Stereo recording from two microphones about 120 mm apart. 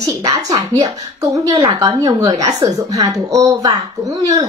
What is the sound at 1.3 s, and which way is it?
Speech, 30° right (ahead or behind).